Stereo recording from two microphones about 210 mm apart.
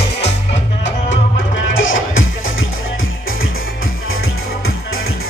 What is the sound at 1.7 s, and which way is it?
Music, 65° left (ahead or behind).